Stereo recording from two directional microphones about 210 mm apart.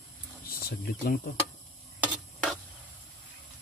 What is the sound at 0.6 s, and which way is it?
Speech, 50° left (ahead or behind).